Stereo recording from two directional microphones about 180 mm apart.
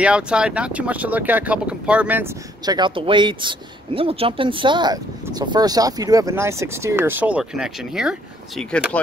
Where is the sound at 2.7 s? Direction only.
25° right (ahead or behind).